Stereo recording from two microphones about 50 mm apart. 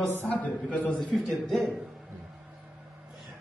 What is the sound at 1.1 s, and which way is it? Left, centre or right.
Speech, centre.